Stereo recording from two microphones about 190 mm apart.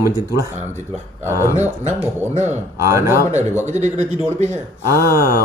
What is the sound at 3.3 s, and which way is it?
Speech, 35° right (ahead or behind).